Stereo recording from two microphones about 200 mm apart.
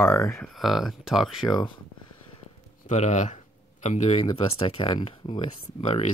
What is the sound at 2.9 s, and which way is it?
Speech, 35° left (ahead or behind).